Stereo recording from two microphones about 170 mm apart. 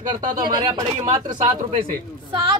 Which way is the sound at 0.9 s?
40° right (ahead or behind).